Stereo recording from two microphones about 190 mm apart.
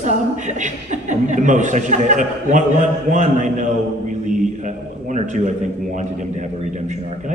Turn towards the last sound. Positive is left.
turn(degrees=-40)  # may be behind; listen again after turning